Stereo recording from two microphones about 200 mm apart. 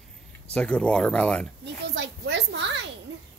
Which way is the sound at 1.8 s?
65° right (ahead or behind).